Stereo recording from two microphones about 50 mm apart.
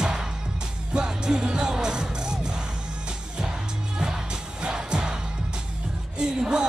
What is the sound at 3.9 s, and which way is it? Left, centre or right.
Music, centre.